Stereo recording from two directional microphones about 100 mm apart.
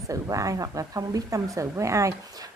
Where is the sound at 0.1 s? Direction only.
35° right (ahead or behind).